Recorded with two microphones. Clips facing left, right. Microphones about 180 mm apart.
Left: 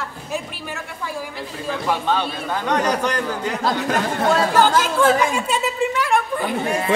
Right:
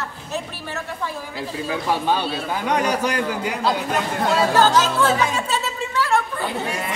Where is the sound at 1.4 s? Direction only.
10° right (ahead or behind).